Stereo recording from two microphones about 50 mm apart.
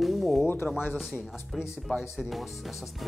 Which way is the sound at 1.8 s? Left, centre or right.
Centre.